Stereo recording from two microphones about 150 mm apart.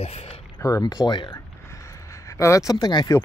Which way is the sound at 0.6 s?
25° left (ahead or behind).